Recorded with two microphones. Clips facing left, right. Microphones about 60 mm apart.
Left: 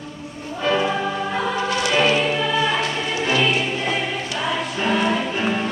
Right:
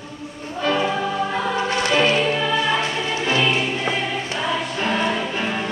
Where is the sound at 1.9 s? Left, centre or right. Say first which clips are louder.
Even; centre.